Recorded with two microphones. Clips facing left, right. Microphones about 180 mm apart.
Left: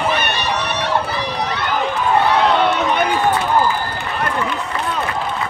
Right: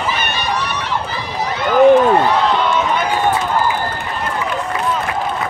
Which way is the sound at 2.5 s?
65° left (ahead or behind).